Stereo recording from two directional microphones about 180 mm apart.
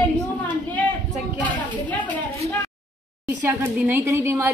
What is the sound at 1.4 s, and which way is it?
A woman's voice, 10° left (ahead or behind).